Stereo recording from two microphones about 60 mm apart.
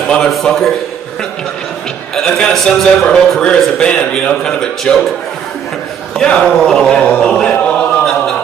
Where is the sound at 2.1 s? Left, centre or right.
Centre.